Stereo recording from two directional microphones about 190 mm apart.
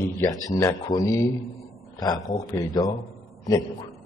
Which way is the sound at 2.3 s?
20° left (ahead or behind).